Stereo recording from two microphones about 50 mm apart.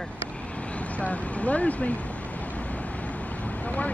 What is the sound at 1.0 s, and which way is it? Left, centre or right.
Speech, left.